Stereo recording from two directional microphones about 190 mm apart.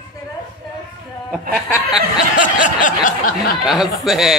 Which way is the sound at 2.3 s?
45° left (ahead or behind).